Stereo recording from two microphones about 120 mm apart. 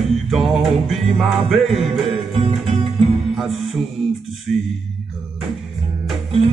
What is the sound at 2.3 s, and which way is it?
Music, 55° right (ahead or behind).